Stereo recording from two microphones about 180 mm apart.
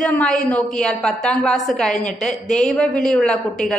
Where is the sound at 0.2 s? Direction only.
5° left (ahead or behind).